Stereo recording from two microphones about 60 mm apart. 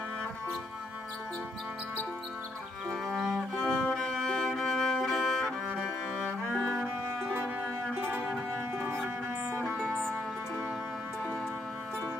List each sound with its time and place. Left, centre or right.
2.9 s music: centre
3.7 s violin: centre
6.1 s cello: centre
8.7 s music: right